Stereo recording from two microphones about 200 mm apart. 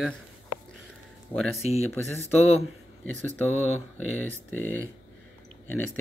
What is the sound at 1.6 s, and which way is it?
Speech, 35° left (ahead or behind).